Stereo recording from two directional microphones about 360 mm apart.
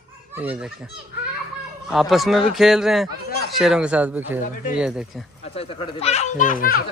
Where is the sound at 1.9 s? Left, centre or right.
Centre.